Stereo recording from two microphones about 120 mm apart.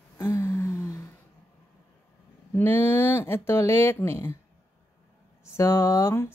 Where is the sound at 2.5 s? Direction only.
20° left (ahead or behind).